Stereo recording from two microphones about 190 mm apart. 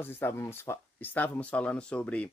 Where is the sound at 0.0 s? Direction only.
10° left (ahead or behind).